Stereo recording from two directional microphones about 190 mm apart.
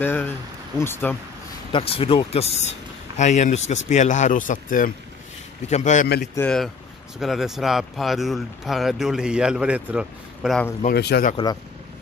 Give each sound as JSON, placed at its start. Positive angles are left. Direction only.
{"t": 0.0, "sound": "speech", "side_deg": 10}
{"t": 1.7, "sound": "speech", "side_deg": 30}
{"t": 6.3, "sound": "speech", "side_deg": 5}
{"t": 11.0, "sound": "speech", "side_deg": 60}